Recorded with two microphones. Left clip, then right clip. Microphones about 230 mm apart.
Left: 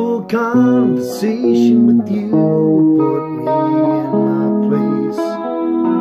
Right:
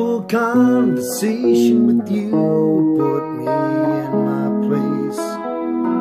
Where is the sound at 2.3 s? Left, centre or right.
Left.